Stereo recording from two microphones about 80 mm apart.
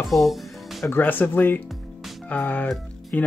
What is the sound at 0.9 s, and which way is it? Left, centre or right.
Speech, left.